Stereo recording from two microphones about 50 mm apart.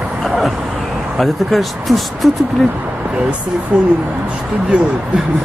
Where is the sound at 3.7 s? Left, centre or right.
Right.